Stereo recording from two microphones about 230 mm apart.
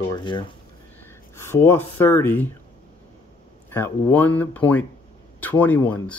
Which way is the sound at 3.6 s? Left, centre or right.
Centre.